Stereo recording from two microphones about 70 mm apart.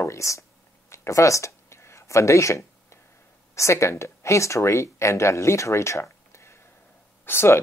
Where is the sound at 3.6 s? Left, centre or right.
Left.